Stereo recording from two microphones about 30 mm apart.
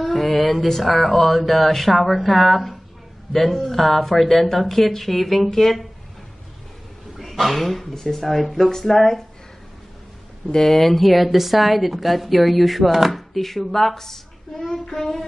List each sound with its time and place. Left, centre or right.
0.0 s a sound: centre
0.7 s a woman's voice: centre
7.2 s speech: centre
7.8 s a woman's voice: centre
10.5 s speech: centre
10.8 s a woman's voice: centre